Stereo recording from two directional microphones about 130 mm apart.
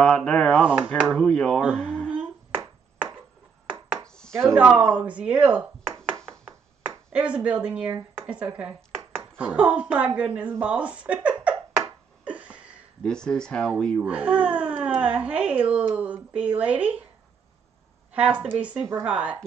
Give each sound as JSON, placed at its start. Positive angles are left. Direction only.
{"t": 0.0, "sound": "speech", "side_deg": 5}
{"t": 0.6, "sound": "speech", "side_deg": -10}
{"t": 1.1, "sound": "speech", "side_deg": 5}
{"t": 2.0, "sound": "hands", "side_deg": -10}
{"t": 4.0, "sound": "chopping", "side_deg": 5}
{"t": 4.6, "sound": "speech", "side_deg": -10}
{"t": 12.3, "sound": "a sound", "side_deg": -10}
{"t": 13.0, "sound": "speech", "side_deg": 5}
{"t": 14.0, "sound": "speech", "side_deg": -10}
{"t": 18.1, "sound": "speech", "side_deg": -10}